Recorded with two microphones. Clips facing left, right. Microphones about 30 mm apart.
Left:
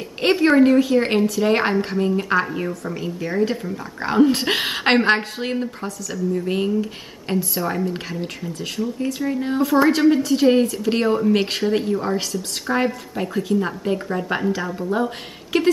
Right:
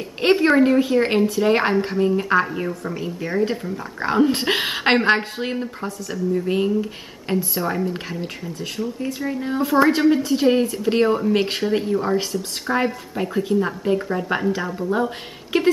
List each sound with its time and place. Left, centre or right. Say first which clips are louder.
0.2 s a woman's voice: left 1 dB; centre
5.9 s speech: even; right
6.3 s a woman's voice: right 1 dB; centre
8.5 s a woman's voice: left 2 dB; centre